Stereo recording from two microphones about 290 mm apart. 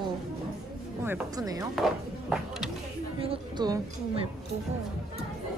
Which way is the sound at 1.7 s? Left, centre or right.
Centre.